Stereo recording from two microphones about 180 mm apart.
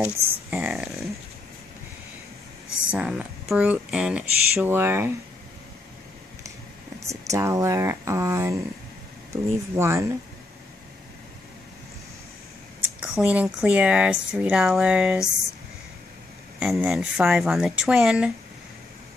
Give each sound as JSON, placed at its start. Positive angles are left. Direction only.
{"t": 0.0, "sound": "speech", "side_deg": -10}
{"t": 2.9, "sound": "speech", "side_deg": -5}
{"t": 7.1, "sound": "speech", "side_deg": -15}
{"t": 13.0, "sound": "speech", "side_deg": -5}
{"t": 16.5, "sound": "speech", "side_deg": -5}